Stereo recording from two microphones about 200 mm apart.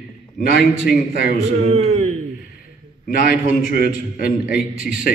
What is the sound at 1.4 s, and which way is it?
Speech, 30° right (ahead or behind).